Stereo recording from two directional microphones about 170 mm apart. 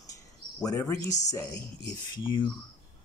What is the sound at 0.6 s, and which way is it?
Speech, 20° left (ahead or behind).